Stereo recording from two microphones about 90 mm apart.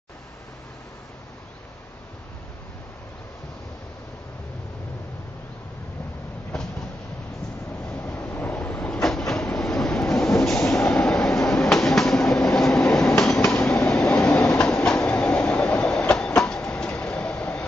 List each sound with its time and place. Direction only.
6.5 s train: 5° left (ahead or behind)
8.0 s cupboard open or close: 25° left (ahead or behind)
9.0 s train: 5° left (ahead or behind)